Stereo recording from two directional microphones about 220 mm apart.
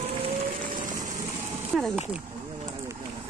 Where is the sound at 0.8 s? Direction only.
35° right (ahead or behind).